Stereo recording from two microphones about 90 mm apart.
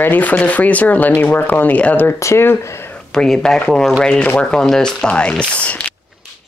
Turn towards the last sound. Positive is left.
turn(degrees=15)  # may be behind; listen again after turning